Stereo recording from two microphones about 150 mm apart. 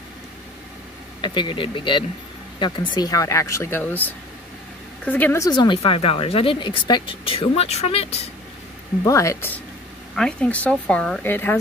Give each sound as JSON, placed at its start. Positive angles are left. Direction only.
{"t": 1.2, "sound": "a woman's voice", "side_deg": 30}
{"t": 5.5, "sound": "speech", "side_deg": 30}
{"t": 5.8, "sound": "speech", "side_deg": 40}
{"t": 9.0, "sound": "speech", "side_deg": 20}
{"t": 10.1, "sound": "a woman's voice", "side_deg": 5}